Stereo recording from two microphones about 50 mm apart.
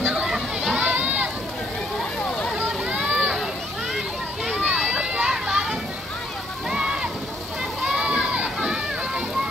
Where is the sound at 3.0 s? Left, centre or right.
Right.